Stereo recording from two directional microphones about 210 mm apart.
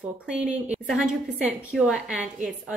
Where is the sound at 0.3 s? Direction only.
5° right (ahead or behind).